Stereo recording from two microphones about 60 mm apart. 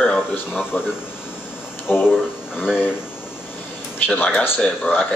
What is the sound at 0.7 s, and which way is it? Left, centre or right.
Speech, left.